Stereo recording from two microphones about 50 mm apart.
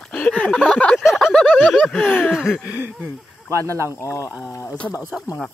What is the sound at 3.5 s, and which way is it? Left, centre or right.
Speech, right.